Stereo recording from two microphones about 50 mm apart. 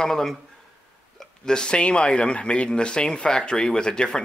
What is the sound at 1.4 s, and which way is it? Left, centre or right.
Speech, centre.